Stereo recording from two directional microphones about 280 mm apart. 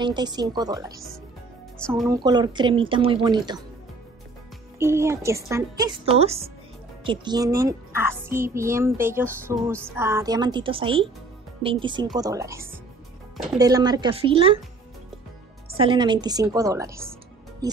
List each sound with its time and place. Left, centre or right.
0.0 s a woman's voice: centre
1.8 s speech: centre
2.0 s a woman's voice: centre
4.7 s a woman's voice: centre
15.7 s a woman's voice: centre